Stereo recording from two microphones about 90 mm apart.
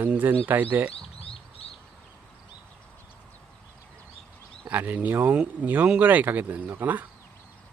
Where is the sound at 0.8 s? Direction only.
90° left.